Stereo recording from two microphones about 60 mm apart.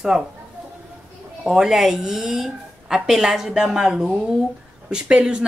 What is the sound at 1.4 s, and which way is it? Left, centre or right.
A woman's voice, centre.